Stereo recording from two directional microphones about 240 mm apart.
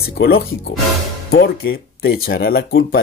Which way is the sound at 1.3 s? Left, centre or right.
Left.